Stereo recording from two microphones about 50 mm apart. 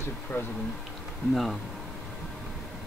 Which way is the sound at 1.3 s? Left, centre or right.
Centre.